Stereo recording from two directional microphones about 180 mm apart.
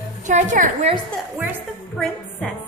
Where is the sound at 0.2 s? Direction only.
40° right (ahead or behind).